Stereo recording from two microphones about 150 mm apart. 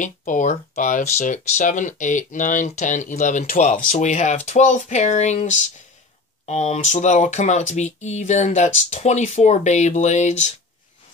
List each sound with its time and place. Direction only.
0.0 s speech: 60° left (ahead or behind)